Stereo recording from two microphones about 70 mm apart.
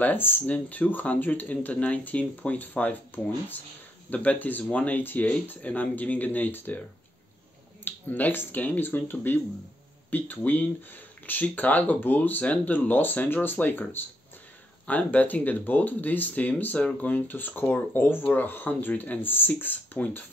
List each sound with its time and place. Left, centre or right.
0.0 s speech: left
4.1 s speech: left
7.8 s speech: left